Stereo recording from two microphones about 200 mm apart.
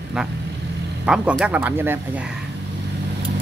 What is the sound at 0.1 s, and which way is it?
Speech, 5° right (ahead or behind).